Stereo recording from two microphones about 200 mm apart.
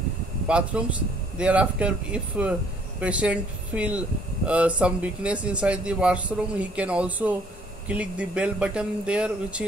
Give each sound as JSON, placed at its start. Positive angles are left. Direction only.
{"t": 0.5, "sound": "speech", "side_deg": -5}